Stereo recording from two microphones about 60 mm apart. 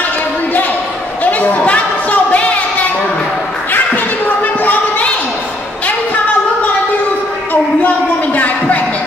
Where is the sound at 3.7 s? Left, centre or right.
Left.